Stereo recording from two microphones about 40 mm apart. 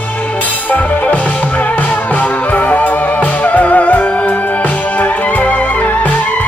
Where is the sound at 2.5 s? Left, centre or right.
Left.